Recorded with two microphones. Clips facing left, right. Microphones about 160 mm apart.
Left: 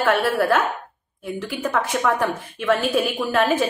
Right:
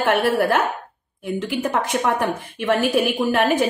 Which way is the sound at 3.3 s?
15° right (ahead or behind).